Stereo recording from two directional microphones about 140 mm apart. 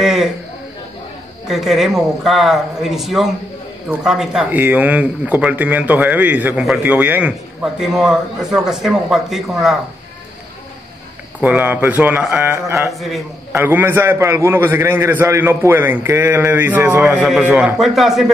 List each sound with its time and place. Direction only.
0.0 s a man's voice: 5° right (ahead or behind)
1.5 s a man's voice: centre (ahead or behind)
11.4 s a man's voice: 10° right (ahead or behind)